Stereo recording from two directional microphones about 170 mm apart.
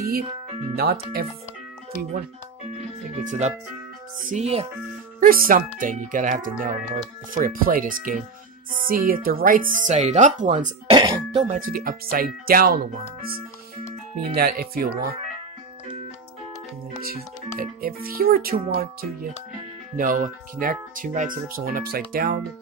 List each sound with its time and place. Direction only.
0.7 s speech: 65° right (ahead or behind)
3.3 s speech: 45° right (ahead or behind)
5.2 s speech: 55° right (ahead or behind)
10.9 s speech: 25° right (ahead or behind)
11.3 s speech: 45° right (ahead or behind); by 13.3 s 60° right (ahead or behind)
14.3 s speech: 65° right (ahead or behind)
17.0 s speech: 60° right (ahead or behind)